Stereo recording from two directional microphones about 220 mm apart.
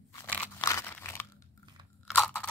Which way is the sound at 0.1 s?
10° left (ahead or behind).